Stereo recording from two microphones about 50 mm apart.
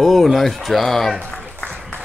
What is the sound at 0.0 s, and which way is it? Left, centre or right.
Speech, centre.